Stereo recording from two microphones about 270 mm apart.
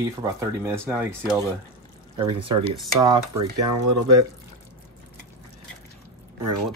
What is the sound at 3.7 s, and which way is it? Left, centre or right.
Speech, right.